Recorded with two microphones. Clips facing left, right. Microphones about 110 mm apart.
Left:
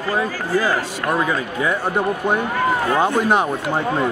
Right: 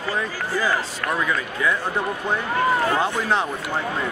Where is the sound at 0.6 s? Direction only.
35° left (ahead or behind).